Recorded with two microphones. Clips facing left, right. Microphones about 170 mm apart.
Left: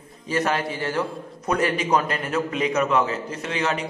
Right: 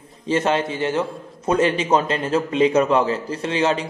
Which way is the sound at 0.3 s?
25° right (ahead or behind).